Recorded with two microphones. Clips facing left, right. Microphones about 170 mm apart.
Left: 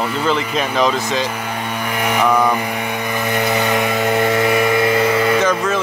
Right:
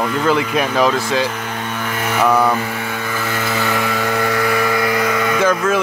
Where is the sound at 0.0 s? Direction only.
10° left (ahead or behind).